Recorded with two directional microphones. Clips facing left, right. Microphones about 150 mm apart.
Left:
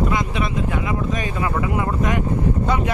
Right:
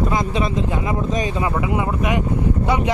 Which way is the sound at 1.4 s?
20° right (ahead or behind).